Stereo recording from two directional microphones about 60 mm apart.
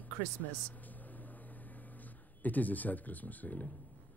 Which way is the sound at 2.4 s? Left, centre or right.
Left.